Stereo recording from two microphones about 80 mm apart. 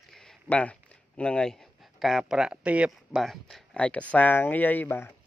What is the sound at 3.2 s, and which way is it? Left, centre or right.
Speech, centre.